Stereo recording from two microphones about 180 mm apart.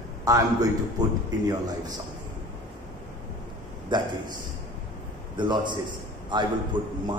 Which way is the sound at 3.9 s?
25° right (ahead or behind).